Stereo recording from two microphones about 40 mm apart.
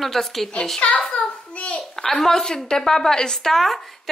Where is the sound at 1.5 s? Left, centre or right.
Left.